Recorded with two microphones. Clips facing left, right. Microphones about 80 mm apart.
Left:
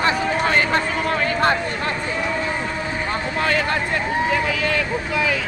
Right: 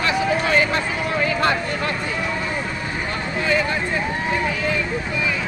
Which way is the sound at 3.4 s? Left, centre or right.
Left.